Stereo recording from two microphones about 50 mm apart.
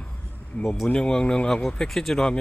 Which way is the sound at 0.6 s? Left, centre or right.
Centre.